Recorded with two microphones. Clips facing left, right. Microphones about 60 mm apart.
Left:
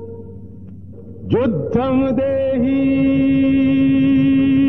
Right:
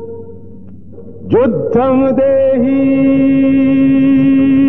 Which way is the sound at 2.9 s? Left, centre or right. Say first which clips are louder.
Right 5 dB; centre.